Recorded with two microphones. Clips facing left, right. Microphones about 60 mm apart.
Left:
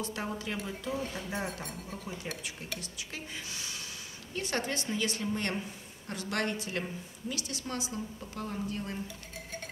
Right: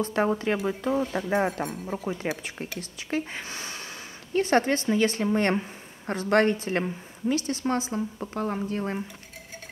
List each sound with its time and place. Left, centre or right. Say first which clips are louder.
0.0 s a woman's voice: right 11 dB; right